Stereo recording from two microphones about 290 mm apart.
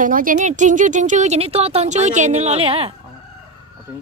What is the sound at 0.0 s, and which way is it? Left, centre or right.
Speech, right.